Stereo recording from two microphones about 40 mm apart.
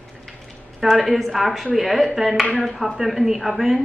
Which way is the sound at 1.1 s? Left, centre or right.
Centre.